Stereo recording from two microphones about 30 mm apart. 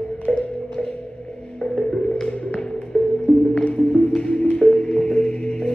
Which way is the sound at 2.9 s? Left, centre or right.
Centre.